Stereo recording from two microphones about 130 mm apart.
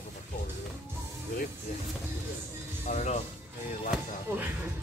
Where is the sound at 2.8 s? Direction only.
60° left (ahead or behind).